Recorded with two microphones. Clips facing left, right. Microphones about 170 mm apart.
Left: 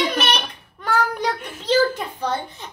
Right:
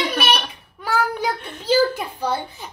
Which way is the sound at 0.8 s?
5° right (ahead or behind).